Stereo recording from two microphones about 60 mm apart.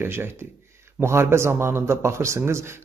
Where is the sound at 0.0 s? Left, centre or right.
Right.